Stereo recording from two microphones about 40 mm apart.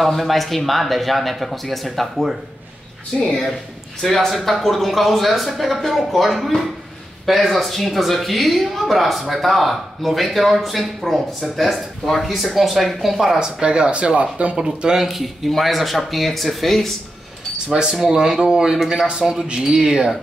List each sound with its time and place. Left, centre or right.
0.0 s speech: centre
4.0 s a man's voice: centre
13.4 s speech: right
14.6 s speech: centre
15.0 s speech: centre
17.7 s speech: centre